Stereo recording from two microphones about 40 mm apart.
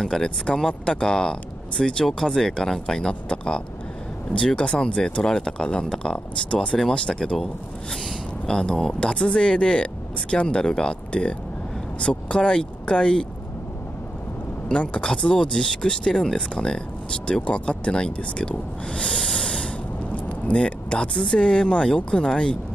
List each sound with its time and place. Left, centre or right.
0.0 s speech: centre
8.5 s speech: centre
14.7 s speech: left; by 16.4 s centre
16.5 s speech: centre
19.2 s snort: centre
20.2 s speech: left